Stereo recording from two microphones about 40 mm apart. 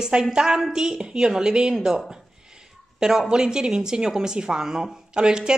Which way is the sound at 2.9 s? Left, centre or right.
Centre.